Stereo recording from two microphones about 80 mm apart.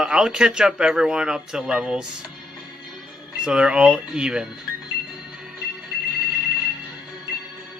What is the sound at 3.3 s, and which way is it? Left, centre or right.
Speech, centre.